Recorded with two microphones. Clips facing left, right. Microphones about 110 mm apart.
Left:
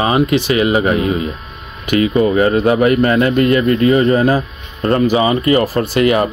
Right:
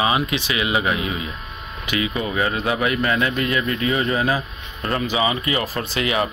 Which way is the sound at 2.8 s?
50° left (ahead or behind).